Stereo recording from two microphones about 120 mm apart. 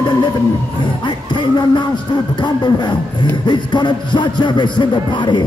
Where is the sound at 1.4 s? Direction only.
40° left (ahead or behind).